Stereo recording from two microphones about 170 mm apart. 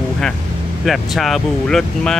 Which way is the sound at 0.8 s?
Centre (ahead or behind).